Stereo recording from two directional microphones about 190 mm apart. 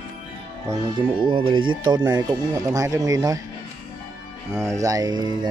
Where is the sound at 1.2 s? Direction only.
25° right (ahead or behind).